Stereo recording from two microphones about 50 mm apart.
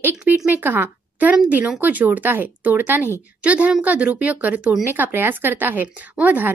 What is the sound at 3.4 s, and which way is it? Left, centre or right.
A woman's voice, right.